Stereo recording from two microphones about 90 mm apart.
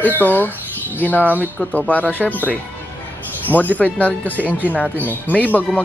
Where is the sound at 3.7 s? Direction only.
15° left (ahead or behind).